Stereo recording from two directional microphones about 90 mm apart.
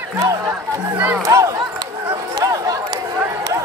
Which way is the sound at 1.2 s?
40° right (ahead or behind).